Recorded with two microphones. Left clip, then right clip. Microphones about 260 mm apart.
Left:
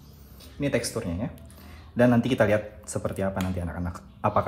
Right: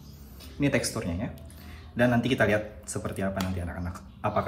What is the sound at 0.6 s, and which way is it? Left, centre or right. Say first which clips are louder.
Speech: even; centre.